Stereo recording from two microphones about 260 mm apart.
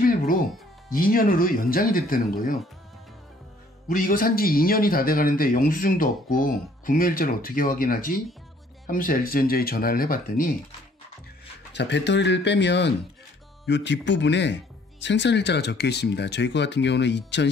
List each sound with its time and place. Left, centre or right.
0.0 s music: left
0.9 s speech: left
3.9 s speech: left
11.7 s speech: left